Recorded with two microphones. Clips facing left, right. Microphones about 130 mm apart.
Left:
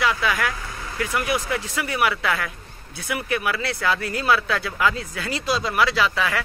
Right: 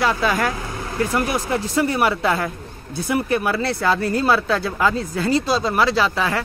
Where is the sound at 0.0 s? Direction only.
35° right (ahead or behind).